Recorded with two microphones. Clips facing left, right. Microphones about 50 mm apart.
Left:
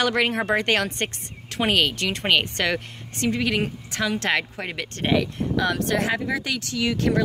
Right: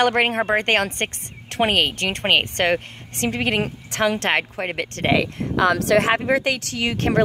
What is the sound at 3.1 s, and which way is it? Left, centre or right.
A woman's voice, right.